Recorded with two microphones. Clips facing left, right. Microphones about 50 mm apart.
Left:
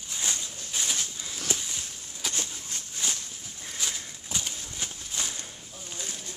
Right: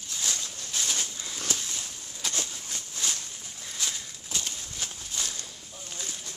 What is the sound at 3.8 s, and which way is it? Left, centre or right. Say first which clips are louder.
Horse: even; centre.